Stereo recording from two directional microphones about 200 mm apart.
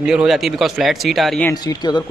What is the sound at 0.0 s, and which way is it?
A man's voice, 5° right (ahead or behind).